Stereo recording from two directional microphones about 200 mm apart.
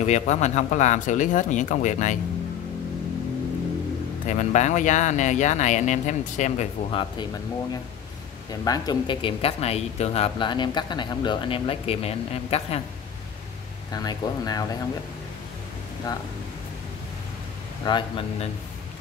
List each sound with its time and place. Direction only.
0.0 s speech: 35° left (ahead or behind)
4.3 s speech: 35° left (ahead or behind)
8.5 s speech: 20° left (ahead or behind)
13.9 s speech: 20° left (ahead or behind)
16.1 s speech: 20° left (ahead or behind)
17.8 s speech: 25° left (ahead or behind)